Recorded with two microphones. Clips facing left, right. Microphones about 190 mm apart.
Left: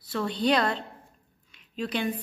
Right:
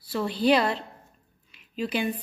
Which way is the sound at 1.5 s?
5° right (ahead or behind).